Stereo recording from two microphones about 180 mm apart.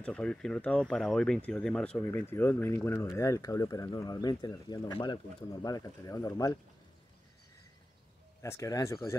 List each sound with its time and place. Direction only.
0.0 s speech: 5° left (ahead or behind)
8.4 s speech: 15° left (ahead or behind)